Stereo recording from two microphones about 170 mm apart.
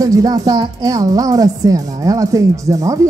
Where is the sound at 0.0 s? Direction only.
20° right (ahead or behind).